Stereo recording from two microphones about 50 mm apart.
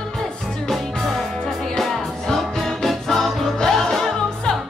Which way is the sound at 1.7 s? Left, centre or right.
Centre.